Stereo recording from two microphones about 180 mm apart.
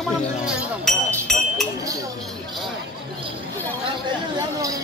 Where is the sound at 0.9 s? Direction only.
Centre (ahead or behind).